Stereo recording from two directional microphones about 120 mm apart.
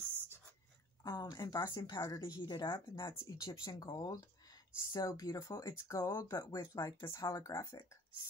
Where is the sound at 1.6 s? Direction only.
20° left (ahead or behind).